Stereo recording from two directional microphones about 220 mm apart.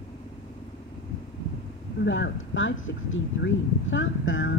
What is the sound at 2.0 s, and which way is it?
Speech, 55° left (ahead or behind).